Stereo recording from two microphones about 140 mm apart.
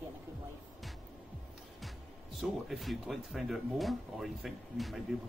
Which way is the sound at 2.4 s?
Centre (ahead or behind).